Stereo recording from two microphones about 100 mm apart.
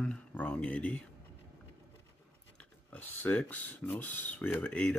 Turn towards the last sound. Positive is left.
turn(degrees=15)  # may be behind; listen again after turning